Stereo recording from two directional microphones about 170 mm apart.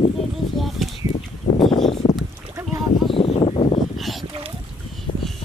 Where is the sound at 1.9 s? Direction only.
40° left (ahead or behind).